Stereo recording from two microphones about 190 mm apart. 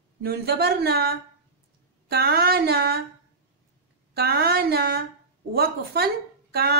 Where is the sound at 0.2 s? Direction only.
55° right (ahead or behind).